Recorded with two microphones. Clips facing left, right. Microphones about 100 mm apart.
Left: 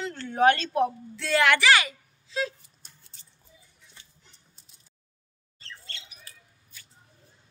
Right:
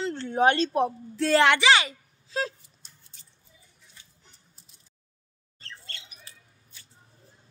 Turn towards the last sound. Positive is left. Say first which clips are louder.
# left 1 dB
turn(degrees=-25)  # may be behind; listen again after turning